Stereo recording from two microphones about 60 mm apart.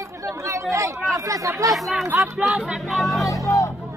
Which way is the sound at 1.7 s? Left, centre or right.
Centre.